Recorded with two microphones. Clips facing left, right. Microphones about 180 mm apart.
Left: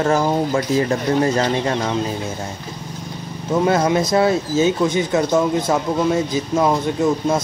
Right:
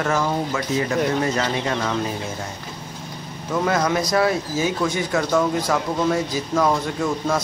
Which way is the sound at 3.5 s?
25° left (ahead or behind).